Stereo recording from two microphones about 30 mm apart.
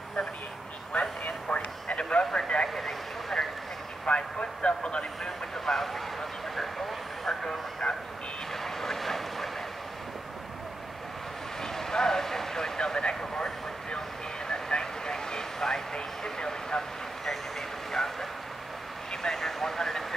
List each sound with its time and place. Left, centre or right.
0.9 s speech: left
1.9 s speech: left
2.7 s vehicle: centre
4.0 s a sound: left
5.7 s speech: centre
7.2 s vehicle: left
8.6 s vehicle: centre
11.6 s vehicle: centre
17.2 s vehicle: centre
19.3 s vehicle: centre